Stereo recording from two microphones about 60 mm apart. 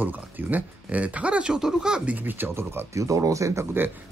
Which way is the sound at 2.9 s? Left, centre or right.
Right.